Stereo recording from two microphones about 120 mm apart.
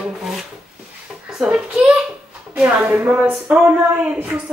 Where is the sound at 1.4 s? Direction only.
Centre (ahead or behind).